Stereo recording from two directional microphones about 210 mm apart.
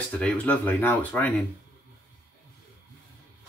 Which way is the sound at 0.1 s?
5° left (ahead or behind).